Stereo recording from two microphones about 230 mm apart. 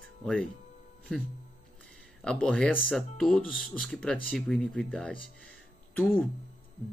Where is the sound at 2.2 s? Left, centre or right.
Centre.